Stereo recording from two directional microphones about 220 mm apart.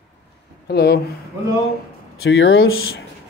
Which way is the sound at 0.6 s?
45° left (ahead or behind).